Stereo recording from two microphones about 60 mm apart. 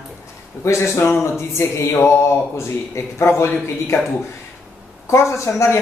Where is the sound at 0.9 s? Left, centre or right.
Left.